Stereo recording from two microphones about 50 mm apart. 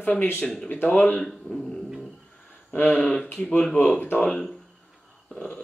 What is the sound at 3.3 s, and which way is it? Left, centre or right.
Speech, left.